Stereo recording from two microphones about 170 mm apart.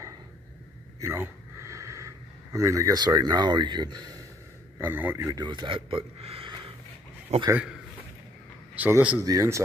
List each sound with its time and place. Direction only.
1.0 s speech: 15° right (ahead or behind)
4.7 s a man's voice: 10° right (ahead or behind); by 7.5 s 40° right (ahead or behind)
8.7 s speech: 10° right (ahead or behind)